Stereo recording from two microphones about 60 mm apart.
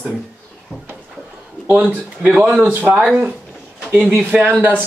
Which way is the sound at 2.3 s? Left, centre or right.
Centre.